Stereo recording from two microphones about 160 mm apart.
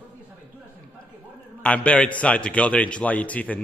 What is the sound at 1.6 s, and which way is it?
A man's voice, 10° left (ahead or behind).